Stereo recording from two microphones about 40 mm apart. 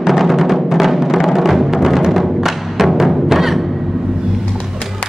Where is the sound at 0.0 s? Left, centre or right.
Centre.